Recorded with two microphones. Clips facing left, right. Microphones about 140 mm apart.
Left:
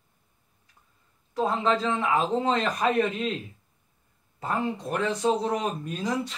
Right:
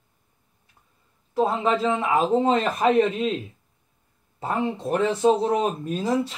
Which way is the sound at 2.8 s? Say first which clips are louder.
Right 5 dB; 25° right (ahead or behind).